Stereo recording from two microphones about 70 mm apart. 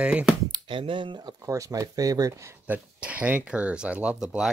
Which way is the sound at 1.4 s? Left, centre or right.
Right.